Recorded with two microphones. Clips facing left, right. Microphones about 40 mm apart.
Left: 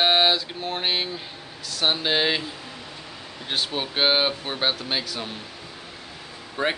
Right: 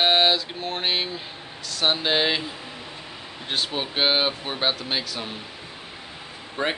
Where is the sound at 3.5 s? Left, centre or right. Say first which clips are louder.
Even; centre.